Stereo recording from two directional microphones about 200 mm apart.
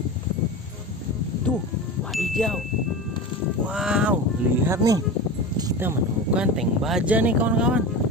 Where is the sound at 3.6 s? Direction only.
5° right (ahead or behind).